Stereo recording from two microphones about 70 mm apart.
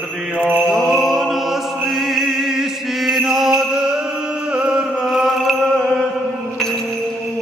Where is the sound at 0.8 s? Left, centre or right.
Centre.